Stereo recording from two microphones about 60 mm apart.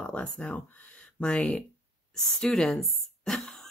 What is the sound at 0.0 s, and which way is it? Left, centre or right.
Speech, left.